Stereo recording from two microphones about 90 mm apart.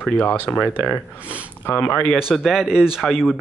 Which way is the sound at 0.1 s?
15° left (ahead or behind).